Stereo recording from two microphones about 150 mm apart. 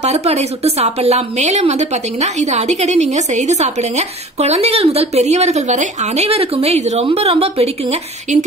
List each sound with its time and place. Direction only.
0.0 s a woman's voice: 45° right (ahead or behind)